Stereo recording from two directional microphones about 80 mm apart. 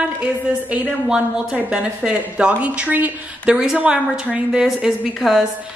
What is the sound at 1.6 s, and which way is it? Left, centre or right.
A woman's voice, centre.